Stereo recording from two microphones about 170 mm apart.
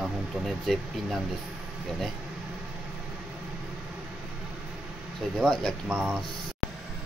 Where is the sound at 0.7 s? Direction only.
Centre (ahead or behind).